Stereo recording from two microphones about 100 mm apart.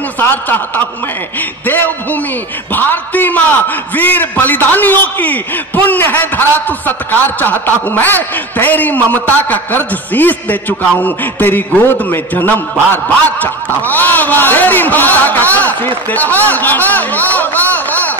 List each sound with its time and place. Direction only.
0.2 s a man's voice: 20° left (ahead or behind)